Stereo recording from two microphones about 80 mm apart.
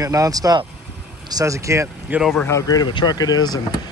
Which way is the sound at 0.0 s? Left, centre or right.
Right.